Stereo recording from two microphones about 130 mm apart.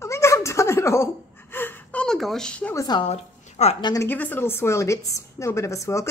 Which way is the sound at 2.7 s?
30° left (ahead or behind).